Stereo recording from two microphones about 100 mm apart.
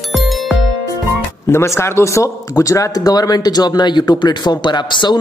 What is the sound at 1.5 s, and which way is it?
Speech, 25° left (ahead or behind).